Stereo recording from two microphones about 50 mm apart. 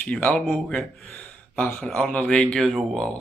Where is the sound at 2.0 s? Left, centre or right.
Left.